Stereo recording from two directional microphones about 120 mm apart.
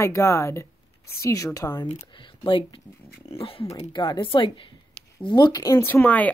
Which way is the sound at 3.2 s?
50° left (ahead or behind).